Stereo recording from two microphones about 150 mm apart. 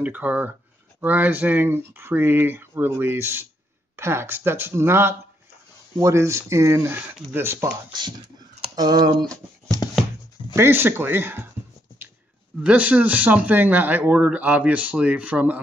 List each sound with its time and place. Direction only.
0.0 s speech: 10° right (ahead or behind)
8.7 s speech: 25° right (ahead or behind)
9.8 s music: 25° left (ahead or behind)
10.5 s speech: 15° right (ahead or behind)
12.6 s speech: 10° right (ahead or behind)